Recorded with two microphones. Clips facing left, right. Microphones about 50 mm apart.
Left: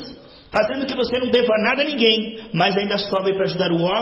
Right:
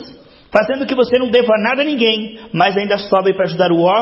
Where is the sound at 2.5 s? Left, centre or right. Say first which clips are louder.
Right 5 dB; right.